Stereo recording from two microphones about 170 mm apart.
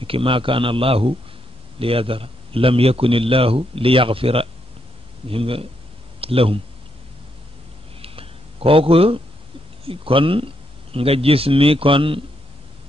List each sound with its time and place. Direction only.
0.0 s a man's voice: 30° right (ahead or behind)
8.0 s a sound: 35° right (ahead or behind)
9.8 s a man's voice: 30° right (ahead or behind)